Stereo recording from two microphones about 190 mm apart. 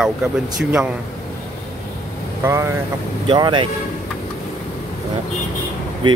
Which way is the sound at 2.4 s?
15° right (ahead or behind).